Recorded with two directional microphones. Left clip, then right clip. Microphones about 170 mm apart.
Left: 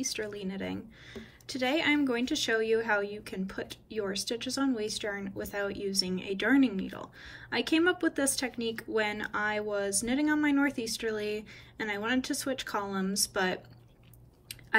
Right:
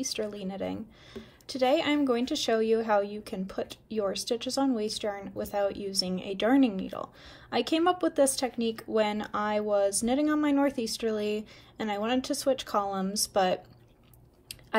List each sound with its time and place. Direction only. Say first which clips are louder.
0.0 s a woman's voice: right 2 dB; 10° right (ahead or behind)